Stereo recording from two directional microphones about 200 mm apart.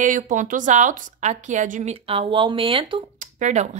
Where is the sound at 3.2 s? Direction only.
35° right (ahead or behind).